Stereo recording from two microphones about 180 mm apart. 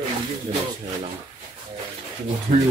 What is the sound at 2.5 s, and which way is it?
Speech, 50° right (ahead or behind).